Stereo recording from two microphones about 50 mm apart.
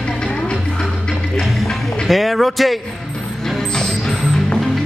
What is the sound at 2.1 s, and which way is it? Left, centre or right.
Speech, centre.